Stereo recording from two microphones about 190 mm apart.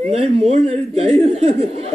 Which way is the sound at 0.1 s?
30° right (ahead or behind).